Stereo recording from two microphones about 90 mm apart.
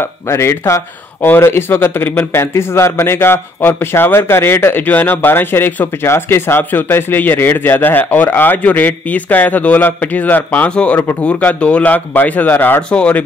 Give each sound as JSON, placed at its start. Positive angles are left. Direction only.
{"t": 0.0, "sound": "speech", "side_deg": 30}